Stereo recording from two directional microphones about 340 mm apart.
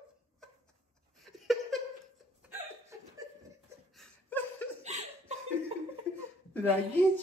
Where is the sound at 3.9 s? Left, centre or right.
Centre.